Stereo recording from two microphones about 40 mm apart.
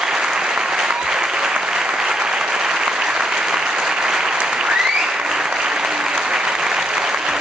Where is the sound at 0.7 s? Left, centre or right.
Centre.